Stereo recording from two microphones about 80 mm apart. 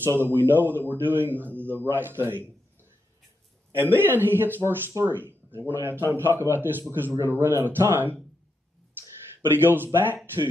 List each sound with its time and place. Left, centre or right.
0.0 s a man's voice: right
3.7 s a man's voice: right
9.5 s a man's voice: right